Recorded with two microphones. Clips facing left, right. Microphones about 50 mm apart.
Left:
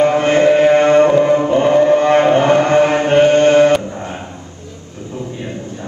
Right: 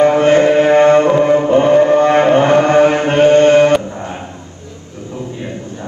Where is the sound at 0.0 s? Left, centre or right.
Right.